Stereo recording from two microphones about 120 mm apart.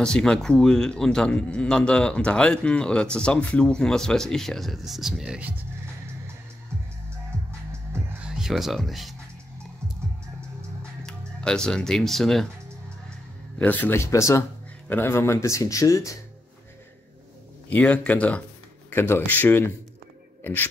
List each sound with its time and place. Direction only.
0.0 s speech: 5° left (ahead or behind); by 5.7 s 10° right (ahead or behind)
8.2 s speech: 5° right (ahead or behind)
11.1 s speech: 5° left (ahead or behind)
13.6 s speech: 15° left (ahead or behind)
17.6 s speech: 10° left (ahead or behind)